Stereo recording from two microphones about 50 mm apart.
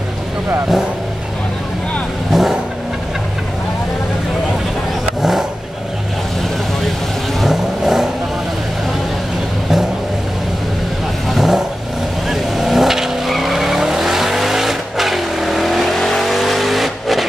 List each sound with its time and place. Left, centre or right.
2.3 s vehicle: centre
7.3 s vehicle: centre
11.2 s vehicle: centre